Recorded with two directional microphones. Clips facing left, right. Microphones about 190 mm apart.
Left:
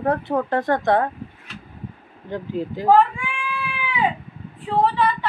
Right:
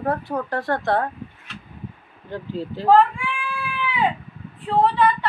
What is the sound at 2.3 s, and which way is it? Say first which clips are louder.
Speech: left 3 dB; 15° left (ahead or behind).